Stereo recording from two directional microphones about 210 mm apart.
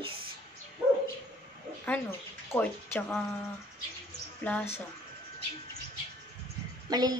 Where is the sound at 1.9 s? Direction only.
10° left (ahead or behind).